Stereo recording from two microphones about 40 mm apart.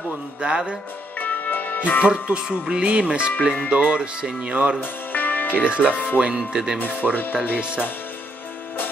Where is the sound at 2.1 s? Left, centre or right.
Centre.